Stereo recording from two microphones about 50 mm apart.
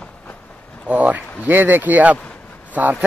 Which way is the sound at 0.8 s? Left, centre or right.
Right.